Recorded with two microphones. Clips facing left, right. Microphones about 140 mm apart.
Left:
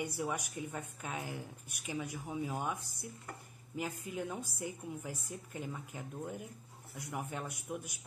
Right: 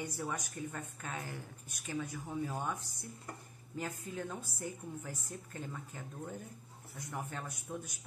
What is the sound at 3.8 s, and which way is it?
Speech, 10° left (ahead or behind).